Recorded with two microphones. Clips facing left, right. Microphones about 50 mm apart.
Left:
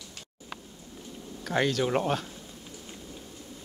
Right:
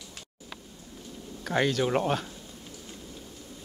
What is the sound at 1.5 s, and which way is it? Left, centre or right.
Speech, centre.